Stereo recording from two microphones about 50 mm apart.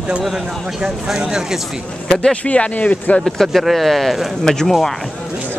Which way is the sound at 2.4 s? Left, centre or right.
Left.